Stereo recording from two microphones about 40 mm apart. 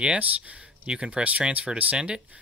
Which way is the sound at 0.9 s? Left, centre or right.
Right.